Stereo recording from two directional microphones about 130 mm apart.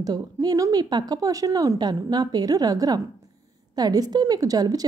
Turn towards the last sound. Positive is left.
turn(degrees=-30)  # may be behind; listen again after turning